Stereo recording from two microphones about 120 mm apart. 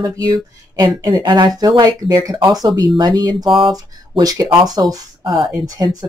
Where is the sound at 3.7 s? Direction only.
30° right (ahead or behind).